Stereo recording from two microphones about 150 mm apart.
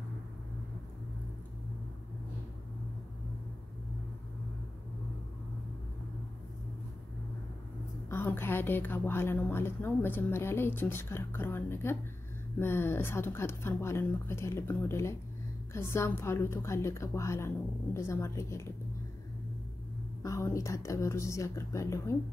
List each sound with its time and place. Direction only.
8.1 s a woman's voice: 15° left (ahead or behind)
20.2 s speech: 20° left (ahead or behind)